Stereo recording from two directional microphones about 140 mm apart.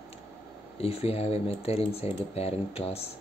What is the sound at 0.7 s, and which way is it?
Speech, 45° left (ahead or behind).